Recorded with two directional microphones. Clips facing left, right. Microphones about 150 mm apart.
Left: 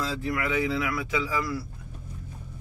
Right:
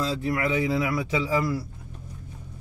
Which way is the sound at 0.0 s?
25° right (ahead or behind).